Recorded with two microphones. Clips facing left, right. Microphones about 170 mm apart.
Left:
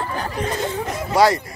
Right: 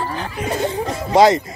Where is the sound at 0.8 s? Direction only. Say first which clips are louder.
Right 4 dB; 25° right (ahead or behind).